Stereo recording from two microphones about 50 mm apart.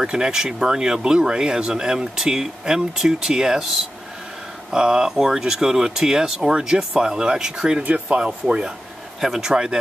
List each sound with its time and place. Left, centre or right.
0.0 s speech: centre
4.6 s speech: centre
9.2 s speech: centre
9.5 s speech: centre